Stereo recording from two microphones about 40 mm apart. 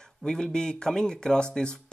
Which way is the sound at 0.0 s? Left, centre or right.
Centre.